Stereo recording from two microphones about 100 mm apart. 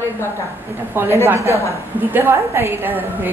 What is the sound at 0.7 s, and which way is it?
A woman's voice, 25° right (ahead or behind).